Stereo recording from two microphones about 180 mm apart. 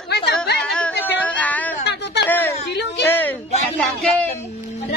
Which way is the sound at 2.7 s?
70° left (ahead or behind).